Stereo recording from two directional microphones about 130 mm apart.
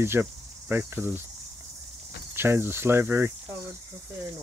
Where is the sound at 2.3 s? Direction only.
15° right (ahead or behind).